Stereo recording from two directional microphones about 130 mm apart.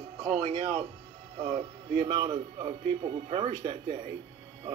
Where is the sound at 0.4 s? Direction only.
45° right (ahead or behind).